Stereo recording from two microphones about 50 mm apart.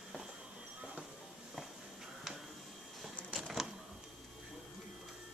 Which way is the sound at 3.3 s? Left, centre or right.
Centre.